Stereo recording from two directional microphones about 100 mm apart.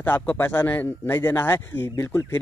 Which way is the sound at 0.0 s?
20° left (ahead or behind).